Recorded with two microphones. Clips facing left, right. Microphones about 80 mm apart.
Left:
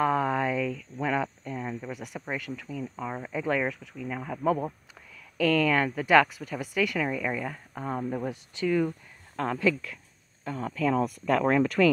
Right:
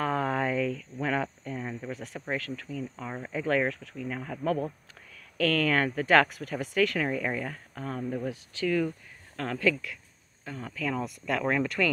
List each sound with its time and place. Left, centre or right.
0.0 s a sound: centre
2.3 s speech: centre
3.4 s speech: centre
5.4 s speech: centre
7.1 s speech: centre
7.4 s speech: centre
9.4 s speech: left
10.5 s speech: left